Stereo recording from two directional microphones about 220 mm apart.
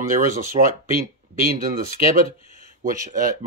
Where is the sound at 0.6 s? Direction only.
25° right (ahead or behind).